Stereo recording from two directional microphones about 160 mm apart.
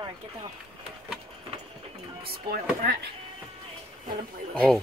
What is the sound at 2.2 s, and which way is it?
Speech, 70° right (ahead or behind).